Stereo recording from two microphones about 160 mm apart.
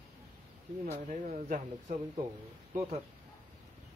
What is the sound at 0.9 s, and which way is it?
Speech, 45° right (ahead or behind).